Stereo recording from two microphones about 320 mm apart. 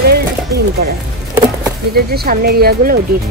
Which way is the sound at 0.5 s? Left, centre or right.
Right.